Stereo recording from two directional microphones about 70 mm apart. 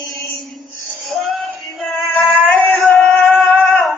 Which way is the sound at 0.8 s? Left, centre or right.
Centre.